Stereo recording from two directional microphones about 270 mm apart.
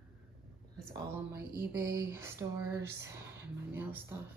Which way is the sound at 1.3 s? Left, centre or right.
Right.